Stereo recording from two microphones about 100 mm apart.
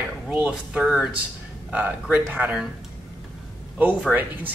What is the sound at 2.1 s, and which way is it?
Speech, 15° right (ahead or behind).